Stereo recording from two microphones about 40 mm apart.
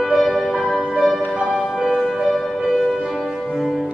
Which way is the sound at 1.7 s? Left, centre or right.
Centre.